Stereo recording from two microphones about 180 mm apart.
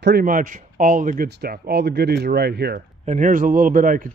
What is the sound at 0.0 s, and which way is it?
Speech, 55° right (ahead or behind).